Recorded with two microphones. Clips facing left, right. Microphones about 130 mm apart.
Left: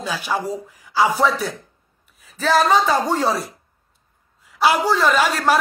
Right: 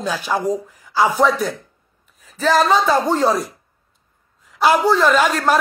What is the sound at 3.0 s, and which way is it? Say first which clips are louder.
Speech: right 3 dB; 45° right (ahead or behind).